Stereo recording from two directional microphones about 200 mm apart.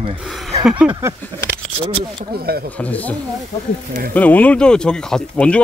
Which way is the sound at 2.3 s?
50° right (ahead or behind).